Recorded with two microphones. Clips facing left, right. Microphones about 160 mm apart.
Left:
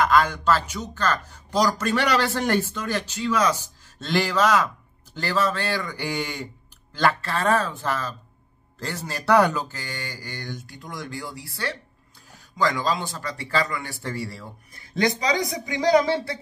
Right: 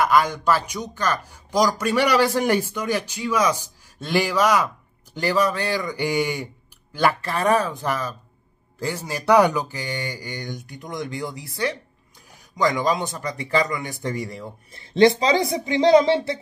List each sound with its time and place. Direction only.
0.0 s a man's voice: 10° right (ahead or behind)